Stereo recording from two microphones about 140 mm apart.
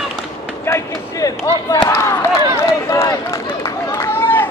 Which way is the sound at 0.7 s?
20° left (ahead or behind).